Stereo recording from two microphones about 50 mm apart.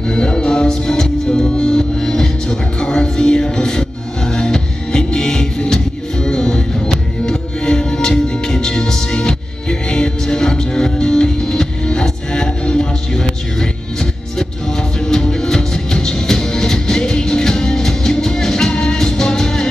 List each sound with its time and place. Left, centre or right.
0.1 s music: centre
15.0 s music: centre